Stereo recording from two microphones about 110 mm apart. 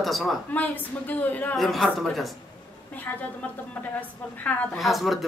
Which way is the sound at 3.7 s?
15° left (ahead or behind).